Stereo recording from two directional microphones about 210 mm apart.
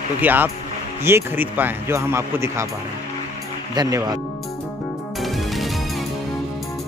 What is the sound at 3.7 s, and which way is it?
Speech, 20° right (ahead or behind).